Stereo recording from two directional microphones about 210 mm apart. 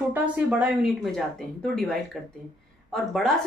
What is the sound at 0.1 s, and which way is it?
A woman's voice, 5° right (ahead or behind).